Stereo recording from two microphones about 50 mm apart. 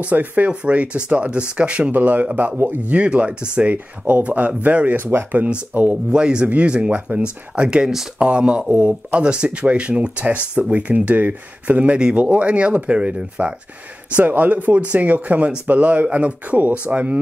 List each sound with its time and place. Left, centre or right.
0.0 s speech: right
1.9 s speech: right
4.9 s speech: right
5.5 s speech: right
6.1 s speech: centre
8.6 s speech: right
9.1 s speech: centre
14.1 s speech: right